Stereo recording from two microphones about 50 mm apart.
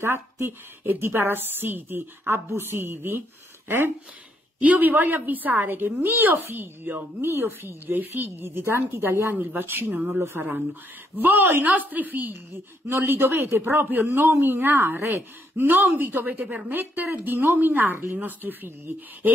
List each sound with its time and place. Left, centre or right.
0.0 s a woman's voice: right
0.8 s speech: right
4.6 s a woman's voice: right
8.6 s speech: right
9.3 s a woman's voice: right
12.8 s speech: right
13.6 s a woman's voice: right